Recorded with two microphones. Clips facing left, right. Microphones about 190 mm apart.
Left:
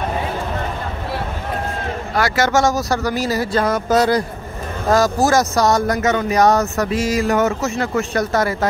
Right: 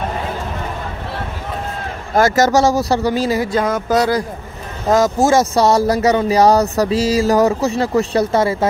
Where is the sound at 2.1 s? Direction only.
45° right (ahead or behind); by 3.4 s 25° right (ahead or behind).